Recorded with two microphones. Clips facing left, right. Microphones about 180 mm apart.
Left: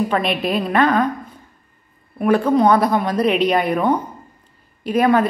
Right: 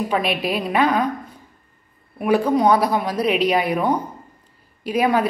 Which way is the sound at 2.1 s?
10° right (ahead or behind).